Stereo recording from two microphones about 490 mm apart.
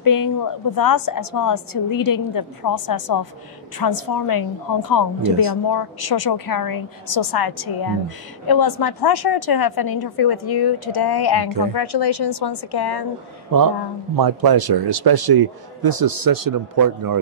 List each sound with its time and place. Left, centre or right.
0.0 s a woman's voice: left
11.4 s a woman's voice: right
11.7 s a woman's voice: left
14.1 s a man's voice: right